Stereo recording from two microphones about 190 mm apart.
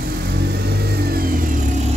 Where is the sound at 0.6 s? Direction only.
55° right (ahead or behind).